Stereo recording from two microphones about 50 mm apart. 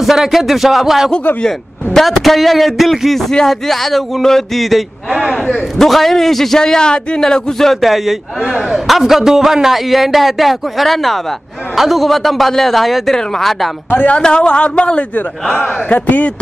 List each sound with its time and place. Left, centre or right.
0.0 s a man's voice: centre
5.5 s a man's voice: centre
13.8 s a man's voice: left